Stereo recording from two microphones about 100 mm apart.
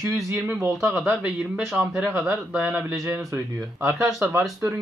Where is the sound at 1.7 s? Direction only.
15° right (ahead or behind).